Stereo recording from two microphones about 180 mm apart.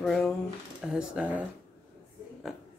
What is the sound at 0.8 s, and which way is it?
Speech, 5° right (ahead or behind).